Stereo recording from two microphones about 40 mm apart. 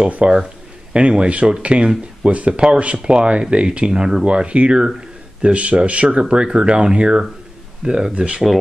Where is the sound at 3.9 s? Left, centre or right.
Centre.